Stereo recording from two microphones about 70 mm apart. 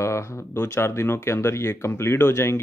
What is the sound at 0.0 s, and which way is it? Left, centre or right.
Speech, left.